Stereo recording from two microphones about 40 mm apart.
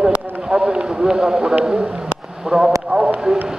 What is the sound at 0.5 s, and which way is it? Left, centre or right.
A man's voice, centre.